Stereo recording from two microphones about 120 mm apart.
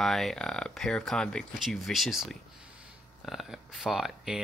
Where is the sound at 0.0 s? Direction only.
5° left (ahead or behind).